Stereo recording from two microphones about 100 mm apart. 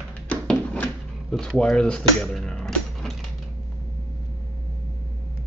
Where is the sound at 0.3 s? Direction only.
15° left (ahead or behind).